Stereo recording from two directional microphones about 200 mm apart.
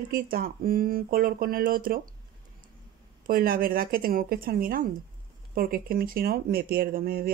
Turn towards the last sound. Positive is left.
turn(degrees=-45)  # may be behind; listen again after turning